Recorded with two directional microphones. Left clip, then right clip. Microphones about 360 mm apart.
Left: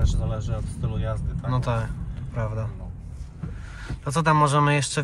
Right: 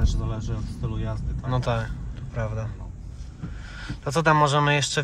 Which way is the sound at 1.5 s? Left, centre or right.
Centre.